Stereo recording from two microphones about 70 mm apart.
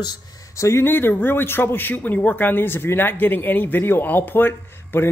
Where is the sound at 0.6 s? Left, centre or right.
Left.